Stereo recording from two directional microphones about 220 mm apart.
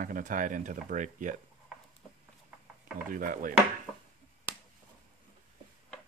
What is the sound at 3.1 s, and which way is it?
Speech, 40° right (ahead or behind).